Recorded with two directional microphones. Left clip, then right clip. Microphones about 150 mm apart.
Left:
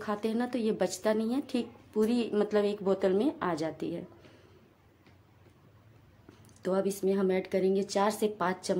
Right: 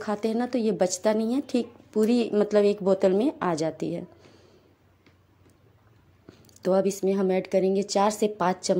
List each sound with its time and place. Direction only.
0.0 s speech: 30° right (ahead or behind)
6.4 s speech: 35° right (ahead or behind)